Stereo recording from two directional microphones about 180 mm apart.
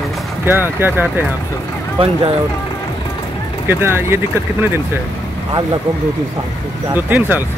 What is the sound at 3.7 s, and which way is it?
Speech, 15° right (ahead or behind).